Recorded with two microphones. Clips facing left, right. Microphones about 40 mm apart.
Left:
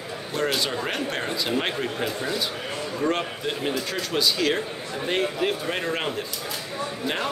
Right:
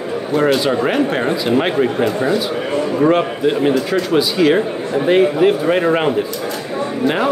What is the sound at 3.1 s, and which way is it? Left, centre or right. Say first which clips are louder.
Speech: right 12 dB; centre.